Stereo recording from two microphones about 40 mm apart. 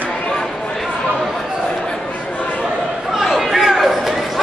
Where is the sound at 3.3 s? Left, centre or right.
Centre.